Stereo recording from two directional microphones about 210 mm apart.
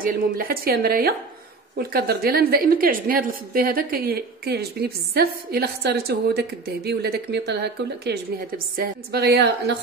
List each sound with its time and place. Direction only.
0.0 s a woman's voice: 45° right (ahead or behind)